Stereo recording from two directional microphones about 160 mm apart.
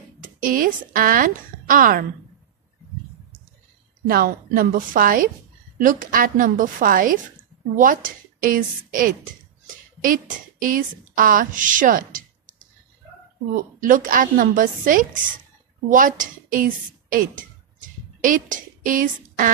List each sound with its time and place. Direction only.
0.2 s a woman's voice: 60° right (ahead or behind)
4.1 s a woman's voice: 65° right (ahead or behind)
17.1 s a sound: 55° right (ahead or behind)